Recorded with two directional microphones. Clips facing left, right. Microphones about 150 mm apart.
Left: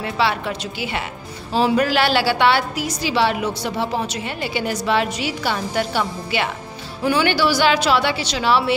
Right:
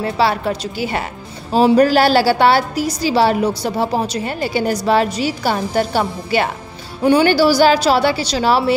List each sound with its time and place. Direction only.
0.0 s a woman's voice: 40° right (ahead or behind)